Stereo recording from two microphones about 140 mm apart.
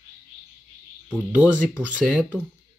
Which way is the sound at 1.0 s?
10° right (ahead or behind).